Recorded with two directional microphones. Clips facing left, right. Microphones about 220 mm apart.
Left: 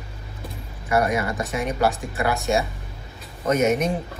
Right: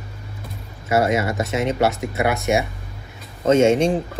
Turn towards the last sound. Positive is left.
turn(degrees=-30)  # may be behind; listen again after turning